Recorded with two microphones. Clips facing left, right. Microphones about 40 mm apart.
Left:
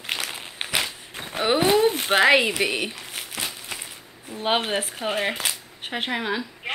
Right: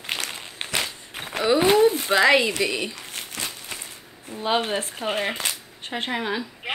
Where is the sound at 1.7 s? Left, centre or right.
Left.